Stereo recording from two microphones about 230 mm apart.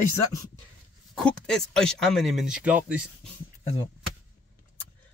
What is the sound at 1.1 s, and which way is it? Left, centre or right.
Speech, centre.